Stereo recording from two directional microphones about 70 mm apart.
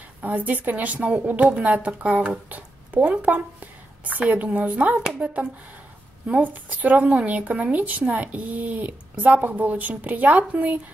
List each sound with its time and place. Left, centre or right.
0.2 s speech: right